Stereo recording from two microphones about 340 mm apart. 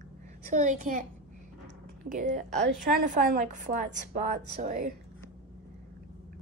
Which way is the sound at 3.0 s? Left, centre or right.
Right.